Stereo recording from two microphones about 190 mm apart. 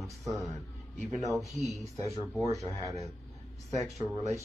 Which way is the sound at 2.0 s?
15° left (ahead or behind).